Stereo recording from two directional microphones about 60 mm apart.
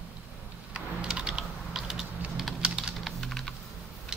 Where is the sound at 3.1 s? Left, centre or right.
Centre.